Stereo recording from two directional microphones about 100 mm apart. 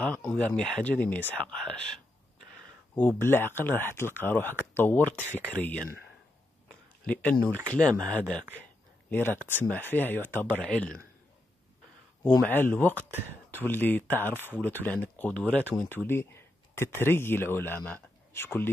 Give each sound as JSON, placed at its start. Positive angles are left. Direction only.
{"t": 0.0, "sound": "speech", "side_deg": 15}
{"t": 2.9, "sound": "speech", "side_deg": 20}
{"t": 7.1, "sound": "speech", "side_deg": 15}
{"t": 12.4, "sound": "speech", "side_deg": 20}